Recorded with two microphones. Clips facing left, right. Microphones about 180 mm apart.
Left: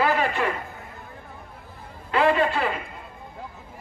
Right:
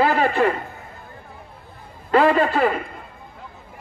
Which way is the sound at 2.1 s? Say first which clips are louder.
Right 4 dB; 45° right (ahead or behind).